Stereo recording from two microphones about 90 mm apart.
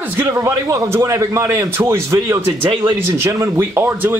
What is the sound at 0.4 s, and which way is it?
A man's voice, 35° right (ahead or behind).